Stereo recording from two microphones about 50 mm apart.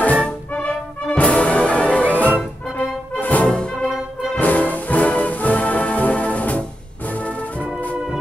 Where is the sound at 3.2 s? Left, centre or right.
Left.